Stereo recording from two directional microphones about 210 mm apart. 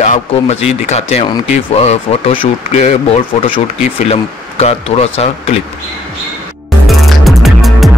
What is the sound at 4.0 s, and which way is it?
Speech, 30° left (ahead or behind).